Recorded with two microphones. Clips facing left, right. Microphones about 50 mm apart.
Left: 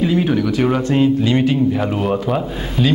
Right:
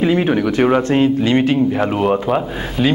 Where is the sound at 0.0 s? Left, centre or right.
Right.